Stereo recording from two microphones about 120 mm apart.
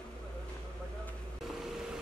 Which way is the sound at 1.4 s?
Centre (ahead or behind).